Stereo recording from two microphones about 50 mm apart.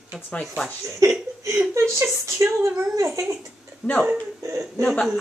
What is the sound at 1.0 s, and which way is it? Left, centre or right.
Speech, right.